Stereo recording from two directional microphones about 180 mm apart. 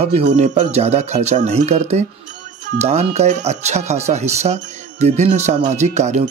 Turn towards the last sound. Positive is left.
turn(degrees=-40)  # may be behind; listen again after turning